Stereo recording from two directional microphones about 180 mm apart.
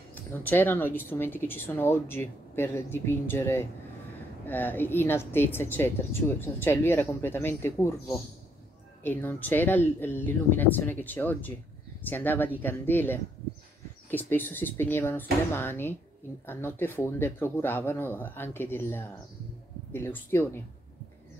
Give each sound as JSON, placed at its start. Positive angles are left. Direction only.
{"t": 0.1, "sound": "a woman's voice", "side_deg": 10}